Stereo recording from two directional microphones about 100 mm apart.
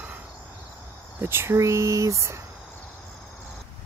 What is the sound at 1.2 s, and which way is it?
Speech, 20° right (ahead or behind).